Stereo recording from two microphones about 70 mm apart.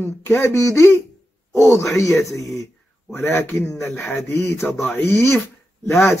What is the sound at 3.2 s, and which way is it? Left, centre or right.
Speech, left.